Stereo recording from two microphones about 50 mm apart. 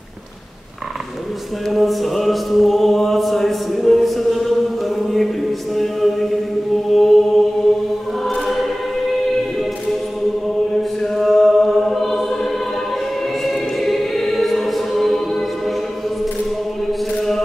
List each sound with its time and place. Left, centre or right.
1.7 s music: centre
6.9 s mantra: centre
8.2 s choir: centre
11.0 s choir: centre